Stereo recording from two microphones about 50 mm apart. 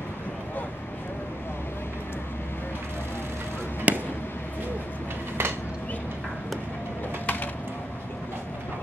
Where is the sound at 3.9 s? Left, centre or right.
Right.